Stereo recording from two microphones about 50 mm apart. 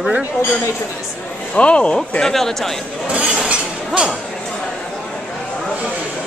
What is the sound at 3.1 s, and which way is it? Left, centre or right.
Chink, right.